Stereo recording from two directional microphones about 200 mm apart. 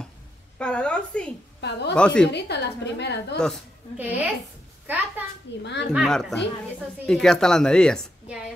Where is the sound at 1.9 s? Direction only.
5° left (ahead or behind).